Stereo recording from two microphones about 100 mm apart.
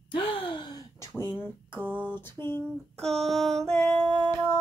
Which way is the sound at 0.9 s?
30° left (ahead or behind).